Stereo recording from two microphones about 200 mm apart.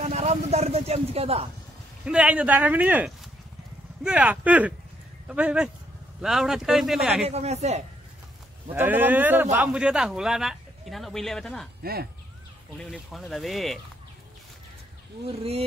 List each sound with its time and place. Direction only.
0.0 s speech: 35° right (ahead or behind)
2.0 s a man's voice: 5° right (ahead or behind)
7.2 s speech: 35° right (ahead or behind)
8.6 s a man's voice: 10° right (ahead or behind)
11.8 s speech: 50° right (ahead or behind)
12.7 s a man's voice: centre (ahead or behind)
15.2 s speech: 30° right (ahead or behind)